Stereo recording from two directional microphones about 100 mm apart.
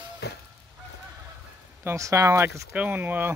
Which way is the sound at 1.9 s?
30° right (ahead or behind).